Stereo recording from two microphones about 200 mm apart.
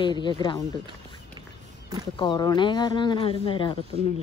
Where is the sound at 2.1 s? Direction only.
25° left (ahead or behind).